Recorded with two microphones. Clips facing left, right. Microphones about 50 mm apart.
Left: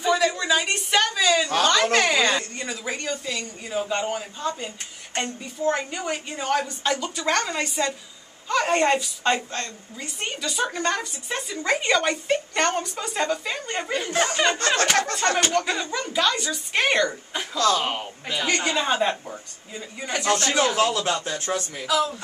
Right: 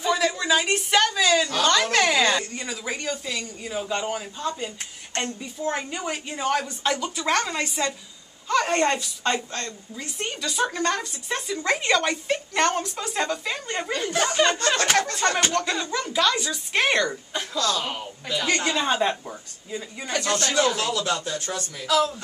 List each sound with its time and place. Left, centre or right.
0.0 s a sound: centre
3.8 s a woman's voice: centre
17.6 s speech: left
18.6 s a woman's voice: centre
20.1 s speech: centre
21.8 s a woman's voice: centre